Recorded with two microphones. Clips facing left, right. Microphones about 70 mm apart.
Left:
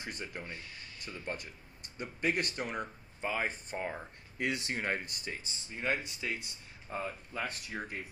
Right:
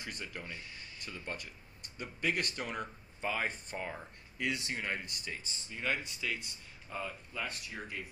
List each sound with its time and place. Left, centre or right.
0.0 s speech: left
4.4 s speech: left